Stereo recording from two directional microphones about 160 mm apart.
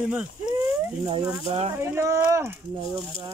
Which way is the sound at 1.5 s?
40° right (ahead or behind).